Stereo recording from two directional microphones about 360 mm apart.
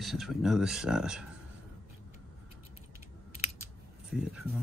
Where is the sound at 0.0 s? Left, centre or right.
Centre.